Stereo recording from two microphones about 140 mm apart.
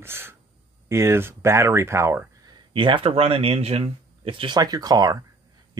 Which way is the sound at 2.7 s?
35° right (ahead or behind).